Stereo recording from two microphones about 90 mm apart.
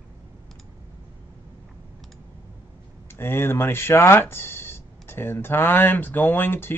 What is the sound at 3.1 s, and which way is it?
Speech, 25° left (ahead or behind).